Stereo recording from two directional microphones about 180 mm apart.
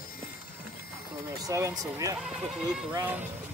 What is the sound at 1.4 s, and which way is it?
Speech, 20° right (ahead or behind).